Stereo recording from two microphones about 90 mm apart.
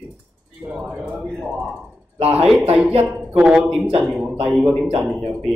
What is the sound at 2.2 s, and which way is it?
Speech, 90° right.